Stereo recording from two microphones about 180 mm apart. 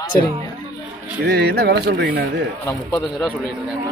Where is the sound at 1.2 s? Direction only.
65° right (ahead or behind).